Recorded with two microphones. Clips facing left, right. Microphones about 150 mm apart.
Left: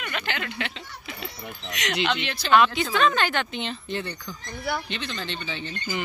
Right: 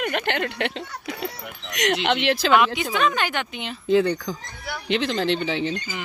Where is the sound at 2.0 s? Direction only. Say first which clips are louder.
Right 7 dB; 70° right (ahead or behind).